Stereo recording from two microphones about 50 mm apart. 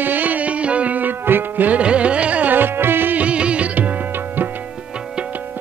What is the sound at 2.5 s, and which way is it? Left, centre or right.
Music, right.